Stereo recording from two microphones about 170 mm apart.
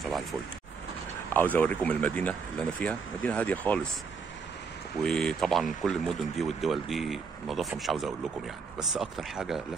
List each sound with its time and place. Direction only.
0.0 s a sound: centre (ahead or behind)
1.3 s speech: 10° left (ahead or behind)
5.0 s a man's voice: 5° left (ahead or behind)